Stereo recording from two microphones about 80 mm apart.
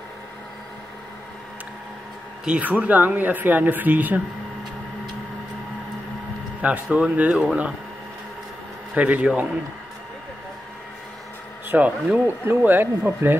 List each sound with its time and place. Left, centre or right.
2.4 s speech: centre
6.6 s speech: centre
8.9 s speech: centre
11.7 s speech: right